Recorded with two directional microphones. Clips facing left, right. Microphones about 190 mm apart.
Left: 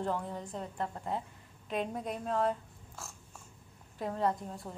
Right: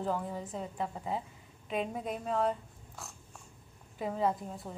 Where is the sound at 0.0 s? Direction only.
Centre (ahead or behind).